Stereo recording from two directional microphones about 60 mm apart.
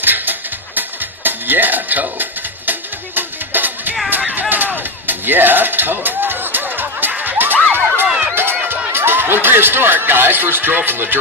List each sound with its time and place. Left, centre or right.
0.0 s music: right
4.3 s a sound: right
7.7 s music: right
8.4 s speech: right